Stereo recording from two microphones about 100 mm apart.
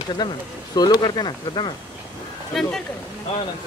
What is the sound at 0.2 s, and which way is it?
Speech, 40° left (ahead or behind).